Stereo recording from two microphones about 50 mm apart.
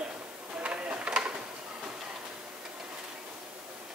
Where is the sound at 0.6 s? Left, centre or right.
Right.